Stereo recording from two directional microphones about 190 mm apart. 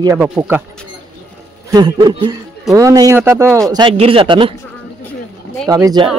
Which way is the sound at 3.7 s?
25° right (ahead or behind).